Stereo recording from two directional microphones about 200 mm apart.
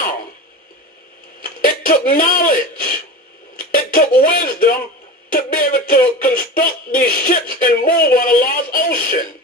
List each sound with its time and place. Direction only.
1.4 s speech: 45° left (ahead or behind)